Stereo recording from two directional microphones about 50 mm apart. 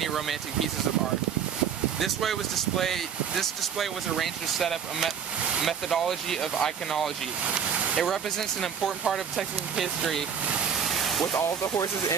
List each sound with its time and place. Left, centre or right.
0.0 s speech: centre
2.0 s speech: centre
8.8 s speech: centre
11.0 s vehicle: centre
11.3 s speech: left